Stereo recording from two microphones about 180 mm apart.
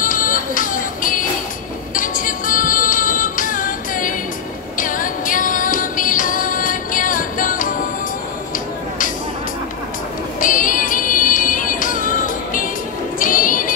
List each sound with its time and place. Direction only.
0.0 s music: 50° left (ahead or behind)
10.4 s music: 50° left (ahead or behind)
13.2 s music: 50° left (ahead or behind)